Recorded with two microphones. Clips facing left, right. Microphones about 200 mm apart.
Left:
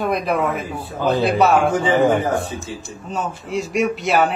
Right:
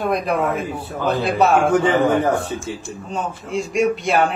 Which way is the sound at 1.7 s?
60° right (ahead or behind).